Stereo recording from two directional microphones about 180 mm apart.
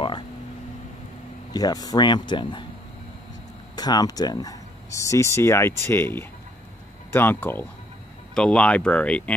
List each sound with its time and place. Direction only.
1.5 s speech: 20° left (ahead or behind)
3.7 s speech: 20° left (ahead or behind)